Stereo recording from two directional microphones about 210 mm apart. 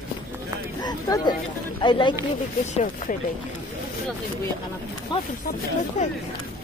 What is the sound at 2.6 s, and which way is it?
Speech, 35° left (ahead or behind).